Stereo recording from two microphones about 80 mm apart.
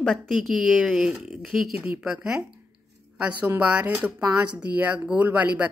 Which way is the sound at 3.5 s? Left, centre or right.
Centre.